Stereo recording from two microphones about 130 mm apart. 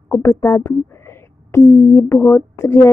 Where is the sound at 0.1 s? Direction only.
20° left (ahead or behind).